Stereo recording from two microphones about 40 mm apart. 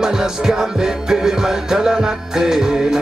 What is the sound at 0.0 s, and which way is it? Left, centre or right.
Music, centre.